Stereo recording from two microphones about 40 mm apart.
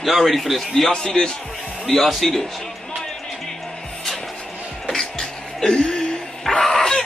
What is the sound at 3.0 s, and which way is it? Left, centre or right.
Music, centre.